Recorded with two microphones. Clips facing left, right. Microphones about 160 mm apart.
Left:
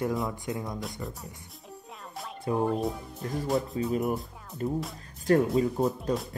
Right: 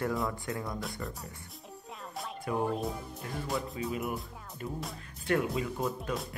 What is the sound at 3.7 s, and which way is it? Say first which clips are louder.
Speech: left 6 dB; 40° left (ahead or behind).